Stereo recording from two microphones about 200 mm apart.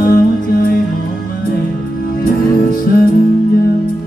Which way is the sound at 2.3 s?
45° left (ahead or behind).